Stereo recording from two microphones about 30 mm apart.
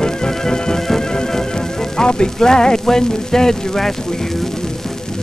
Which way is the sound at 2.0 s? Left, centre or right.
Left.